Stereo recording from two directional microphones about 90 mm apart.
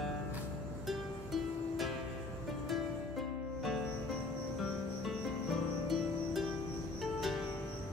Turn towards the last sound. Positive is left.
turn(degrees=0)  # may be behind; listen again after turning